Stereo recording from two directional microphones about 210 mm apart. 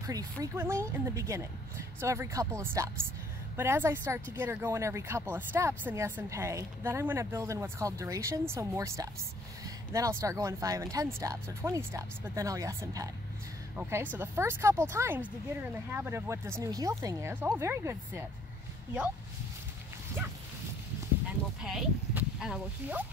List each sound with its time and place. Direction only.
0.0 s speech: 15° right (ahead or behind)
10.2 s speech: 15° right (ahead or behind)
21.6 s speech: centre (ahead or behind)